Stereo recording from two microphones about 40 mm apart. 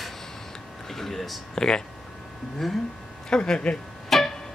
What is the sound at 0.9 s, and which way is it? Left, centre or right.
Speech, centre.